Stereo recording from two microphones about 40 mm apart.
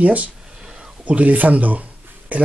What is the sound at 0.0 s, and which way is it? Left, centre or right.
Speech, right.